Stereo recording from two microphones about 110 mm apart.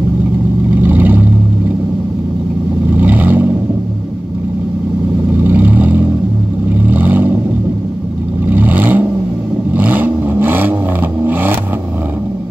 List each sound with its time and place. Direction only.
0.7 s vehicle: 15° right (ahead or behind)
3.0 s vehicle: 15° right (ahead or behind)
5.4 s vehicle: 15° right (ahead or behind)
8.5 s vehicle: 15° right (ahead or behind)